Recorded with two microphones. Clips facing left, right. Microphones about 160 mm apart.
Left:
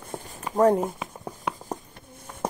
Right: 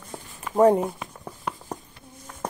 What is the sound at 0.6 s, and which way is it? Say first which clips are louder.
Speech: right 2 dB; centre (ahead or behind).